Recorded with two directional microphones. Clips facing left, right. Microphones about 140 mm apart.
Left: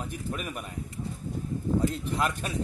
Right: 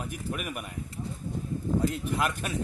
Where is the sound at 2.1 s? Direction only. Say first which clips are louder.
Even; centre (ahead or behind).